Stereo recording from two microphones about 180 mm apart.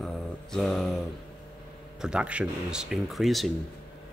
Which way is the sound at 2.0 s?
5° right (ahead or behind).